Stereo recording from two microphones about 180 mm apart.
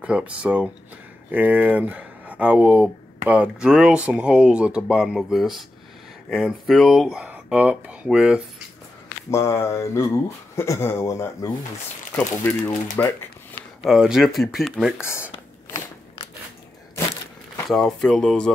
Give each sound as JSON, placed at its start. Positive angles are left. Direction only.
{"t": 0.0, "sound": "speech", "side_deg": -5}
{"t": 9.3, "sound": "speech", "side_deg": 15}
{"t": 13.8, "sound": "speech", "side_deg": -5}
{"t": 17.6, "sound": "speech", "side_deg": 5}